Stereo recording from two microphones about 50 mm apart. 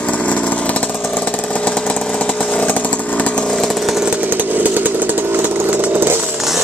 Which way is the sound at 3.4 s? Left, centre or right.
Centre.